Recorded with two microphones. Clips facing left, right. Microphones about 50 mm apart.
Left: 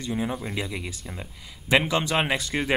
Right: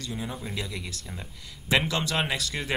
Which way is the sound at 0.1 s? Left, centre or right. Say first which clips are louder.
Left 7 dB; centre.